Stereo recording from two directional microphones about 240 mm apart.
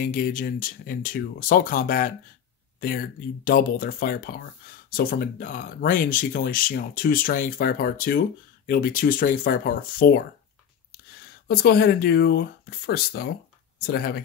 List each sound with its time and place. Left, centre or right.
0.0 s speech: left
11.4 s speech: left